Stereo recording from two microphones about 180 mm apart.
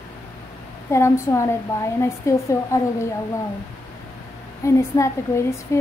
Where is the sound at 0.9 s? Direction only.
15° left (ahead or behind).